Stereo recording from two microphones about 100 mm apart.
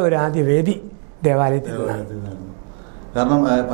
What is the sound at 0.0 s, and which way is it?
Speech, 15° right (ahead or behind).